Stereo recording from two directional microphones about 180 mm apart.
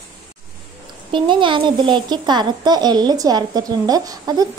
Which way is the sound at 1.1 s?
25° right (ahead or behind).